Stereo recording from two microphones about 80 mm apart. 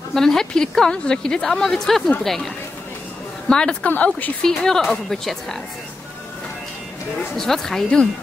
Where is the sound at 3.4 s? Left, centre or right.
Centre.